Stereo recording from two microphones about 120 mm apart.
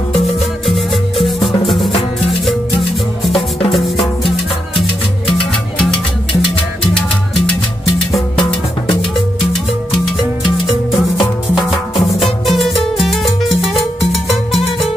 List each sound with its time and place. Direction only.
0.7 s music: centre (ahead or behind)
3.7 s music: centre (ahead or behind)
8.4 s music: 40° left (ahead or behind)
10.7 s music: centre (ahead or behind)